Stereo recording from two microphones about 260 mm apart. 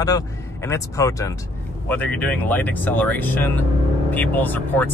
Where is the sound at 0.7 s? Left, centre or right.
Centre.